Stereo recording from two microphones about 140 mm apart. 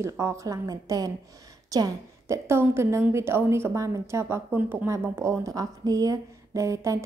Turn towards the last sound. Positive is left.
turn(degrees=-20)  # may be behind; listen again after turning